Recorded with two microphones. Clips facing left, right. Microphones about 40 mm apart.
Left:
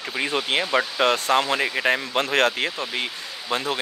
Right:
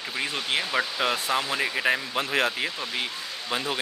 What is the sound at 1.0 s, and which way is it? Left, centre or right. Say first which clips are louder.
Speech: left 6 dB; centre.